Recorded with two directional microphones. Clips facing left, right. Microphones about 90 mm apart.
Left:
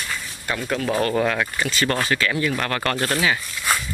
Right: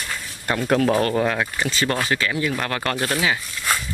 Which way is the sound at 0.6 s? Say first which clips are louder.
Right 6 dB; 45° right (ahead or behind).